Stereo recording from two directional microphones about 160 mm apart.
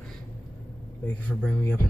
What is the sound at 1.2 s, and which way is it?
Speech, 10° left (ahead or behind).